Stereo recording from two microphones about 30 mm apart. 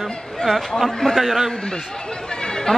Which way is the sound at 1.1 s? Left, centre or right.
Centre.